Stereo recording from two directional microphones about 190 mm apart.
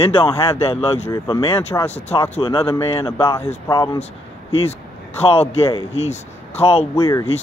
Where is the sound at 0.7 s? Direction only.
30° left (ahead or behind); by 3.4 s 15° left (ahead or behind).